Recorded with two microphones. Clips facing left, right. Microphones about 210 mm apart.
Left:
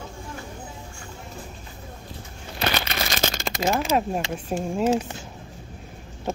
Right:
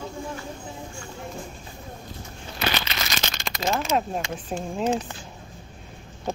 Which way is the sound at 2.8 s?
55° left (ahead or behind).